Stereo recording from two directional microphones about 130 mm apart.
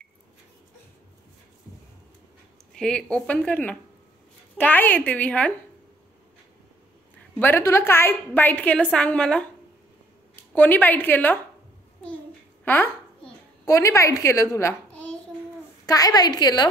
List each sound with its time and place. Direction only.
2.7 s a woman's voice: 5° left (ahead or behind)
7.3 s a woman's voice: 15° left (ahead or behind)
10.5 s a woman's voice: 15° left (ahead or behind)
12.6 s a sound: 15° left (ahead or behind)
13.7 s a child's voice: 25° left (ahead or behind)
15.8 s a woman's voice: 30° left (ahead or behind)